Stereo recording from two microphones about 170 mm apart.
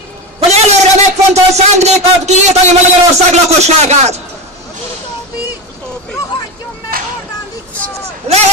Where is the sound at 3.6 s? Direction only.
40° right (ahead or behind).